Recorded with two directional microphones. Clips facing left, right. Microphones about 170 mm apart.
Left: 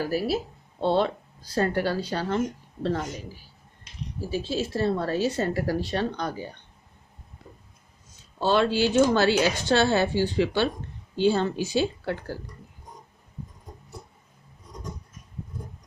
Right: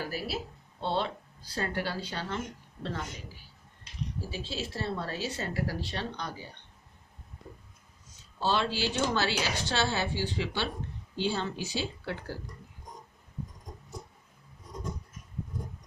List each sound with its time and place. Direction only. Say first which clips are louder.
0.0 s speech: left 9 dB; 40° left (ahead or behind)
4.3 s speech: left 14 dB; 45° left (ahead or behind)
8.4 s speech: left 7 dB; 55° left (ahead or behind)